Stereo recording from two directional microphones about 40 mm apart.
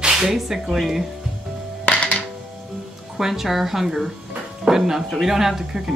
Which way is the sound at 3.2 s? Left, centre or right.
Centre.